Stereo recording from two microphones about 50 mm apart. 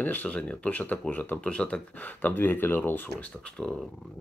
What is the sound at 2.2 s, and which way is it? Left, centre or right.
Speech, left.